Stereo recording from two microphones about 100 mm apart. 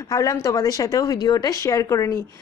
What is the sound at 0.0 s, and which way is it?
Speech, 30° left (ahead or behind).